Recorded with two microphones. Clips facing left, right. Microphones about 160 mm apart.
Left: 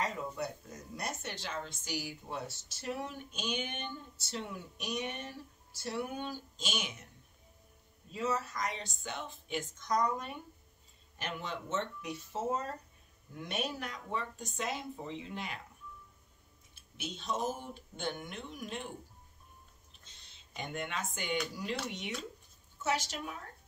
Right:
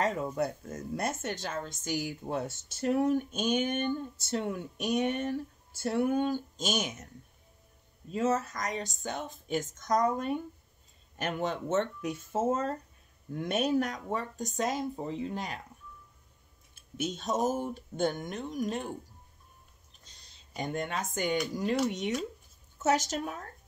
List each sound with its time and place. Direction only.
0.0 s speech: 50° right (ahead or behind)
8.1 s speech: 45° right (ahead or behind)
16.7 s speech: 45° right (ahead or behind)
19.9 s a sound: 40° right (ahead or behind)
21.9 s speech: 45° right (ahead or behind)